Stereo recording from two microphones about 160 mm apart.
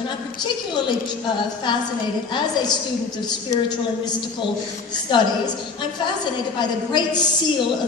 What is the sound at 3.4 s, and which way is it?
Speech, 25° left (ahead or behind).